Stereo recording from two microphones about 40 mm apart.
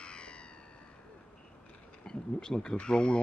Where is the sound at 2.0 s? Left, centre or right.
Centre.